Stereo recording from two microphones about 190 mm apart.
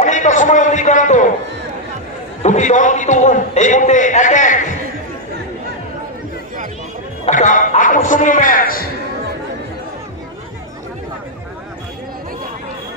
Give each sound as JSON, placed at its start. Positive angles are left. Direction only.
{"t": 0.0, "sound": "a man's voice", "side_deg": 40}
{"t": 2.4, "sound": "a man's voice", "side_deg": 40}
{"t": 7.2, "sound": "speech", "side_deg": 40}